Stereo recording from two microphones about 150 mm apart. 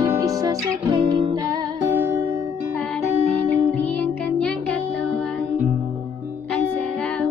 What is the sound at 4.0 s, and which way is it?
Music, 5° left (ahead or behind).